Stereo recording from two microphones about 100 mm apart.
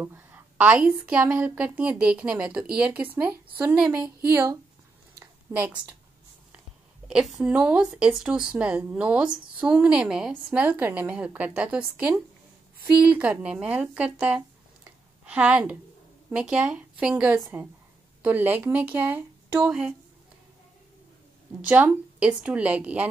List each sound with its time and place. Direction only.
0.0 s a sound: 20° right (ahead or behind)
1.0 s speech: 10° right (ahead or behind)
5.5 s a woman's voice: 30° right (ahead or behind)
7.1 s speech: 5° right (ahead or behind)
21.5 s speech: 10° right (ahead or behind)